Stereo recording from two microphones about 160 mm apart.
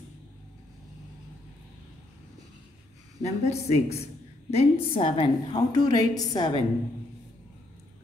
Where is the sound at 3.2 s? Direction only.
45° left (ahead or behind); by 6.6 s 25° left (ahead or behind).